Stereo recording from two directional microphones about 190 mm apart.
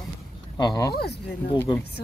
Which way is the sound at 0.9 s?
60° left (ahead or behind).